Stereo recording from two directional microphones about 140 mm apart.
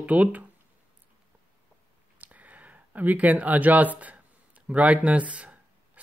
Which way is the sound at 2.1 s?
10° right (ahead or behind).